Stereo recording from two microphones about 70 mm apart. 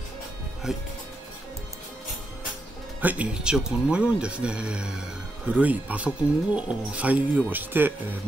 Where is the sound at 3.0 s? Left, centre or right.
Right.